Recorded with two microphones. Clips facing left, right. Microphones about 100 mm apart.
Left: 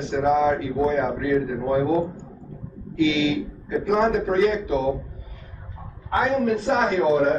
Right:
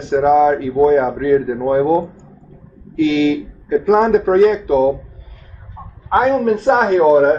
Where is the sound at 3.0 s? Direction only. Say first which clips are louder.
Right 6 dB; 35° right (ahead or behind).